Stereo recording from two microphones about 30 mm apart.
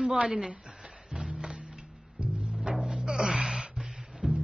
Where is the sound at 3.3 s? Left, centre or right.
Right.